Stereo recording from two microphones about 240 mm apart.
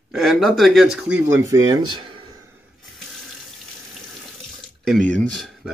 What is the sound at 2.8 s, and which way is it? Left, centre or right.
Water tap, centre.